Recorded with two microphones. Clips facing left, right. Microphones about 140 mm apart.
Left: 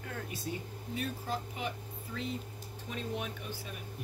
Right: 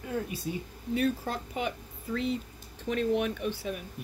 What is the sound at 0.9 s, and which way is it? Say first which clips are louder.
Speech: right 8 dB; 65° right (ahead or behind).